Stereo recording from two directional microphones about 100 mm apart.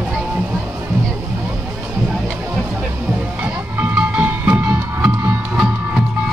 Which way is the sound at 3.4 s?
20° right (ahead or behind).